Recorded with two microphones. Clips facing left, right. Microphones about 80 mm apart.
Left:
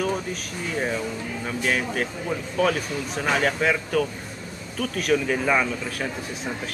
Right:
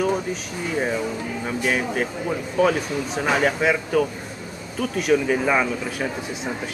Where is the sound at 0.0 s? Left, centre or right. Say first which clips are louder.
Right 4 dB; centre.